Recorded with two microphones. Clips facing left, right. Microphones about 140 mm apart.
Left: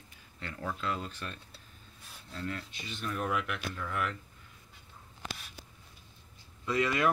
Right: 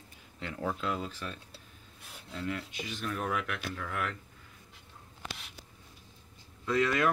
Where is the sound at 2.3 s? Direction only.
10° right (ahead or behind).